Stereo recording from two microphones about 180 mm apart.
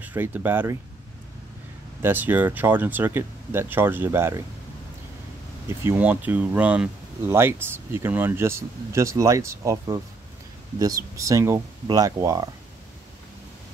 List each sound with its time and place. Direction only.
0.0 s speech: 10° right (ahead or behind)
2.0 s speech: 10° right (ahead or behind)
5.7 s speech: 10° right (ahead or behind)